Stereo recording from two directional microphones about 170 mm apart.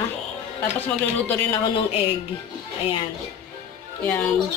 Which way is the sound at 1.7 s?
35° left (ahead or behind).